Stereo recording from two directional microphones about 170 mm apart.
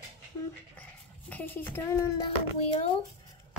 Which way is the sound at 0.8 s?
10° left (ahead or behind).